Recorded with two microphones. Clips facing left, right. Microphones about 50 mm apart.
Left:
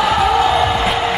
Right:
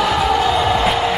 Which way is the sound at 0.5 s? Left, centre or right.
Centre.